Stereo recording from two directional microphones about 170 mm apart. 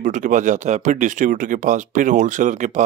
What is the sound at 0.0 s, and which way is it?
Speech, 50° right (ahead or behind).